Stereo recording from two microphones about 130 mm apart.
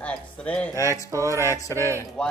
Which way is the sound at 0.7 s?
25° left (ahead or behind).